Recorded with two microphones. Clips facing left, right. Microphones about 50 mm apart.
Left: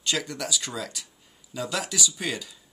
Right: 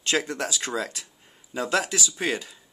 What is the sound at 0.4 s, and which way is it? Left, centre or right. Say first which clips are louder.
Speech: right 3 dB; right.